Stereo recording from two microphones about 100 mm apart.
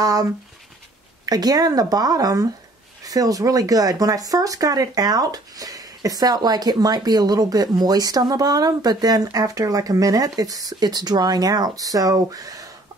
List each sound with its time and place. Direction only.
0.0 s speech: 35° right (ahead or behind)